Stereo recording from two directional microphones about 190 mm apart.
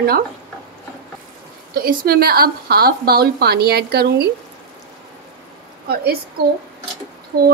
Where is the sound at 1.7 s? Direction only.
50° right (ahead or behind).